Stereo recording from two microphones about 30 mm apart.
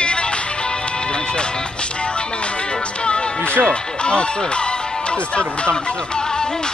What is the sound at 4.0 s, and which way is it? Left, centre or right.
Speech, left.